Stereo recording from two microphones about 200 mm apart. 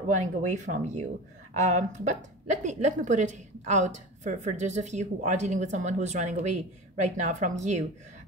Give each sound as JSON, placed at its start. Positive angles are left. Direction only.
{"t": 0.1, "sound": "a woman's voice", "side_deg": -35}